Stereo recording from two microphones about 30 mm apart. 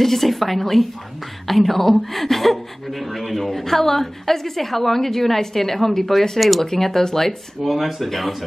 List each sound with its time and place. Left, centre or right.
0.0 s a woman's voice: centre
7.6 s speech: centre